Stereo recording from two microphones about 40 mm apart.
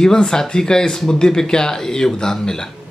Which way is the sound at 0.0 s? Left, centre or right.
Centre.